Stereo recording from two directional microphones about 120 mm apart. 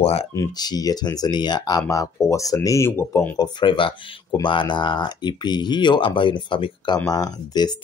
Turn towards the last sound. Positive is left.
turn(degrees=35)  # may be behind; listen again after turning